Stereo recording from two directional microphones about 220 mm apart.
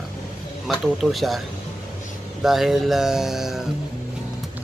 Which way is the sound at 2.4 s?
Centre (ahead or behind).